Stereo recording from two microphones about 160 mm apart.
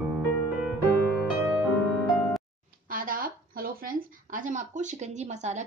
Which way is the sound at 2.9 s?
60° right (ahead or behind).